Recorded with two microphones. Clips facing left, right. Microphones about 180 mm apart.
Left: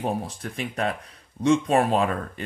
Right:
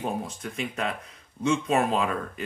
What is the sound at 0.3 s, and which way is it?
Speech, 35° left (ahead or behind).